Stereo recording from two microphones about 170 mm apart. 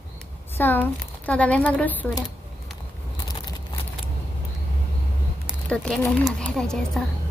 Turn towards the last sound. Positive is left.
turn(degrees=5)  # may be behind; listen again after turning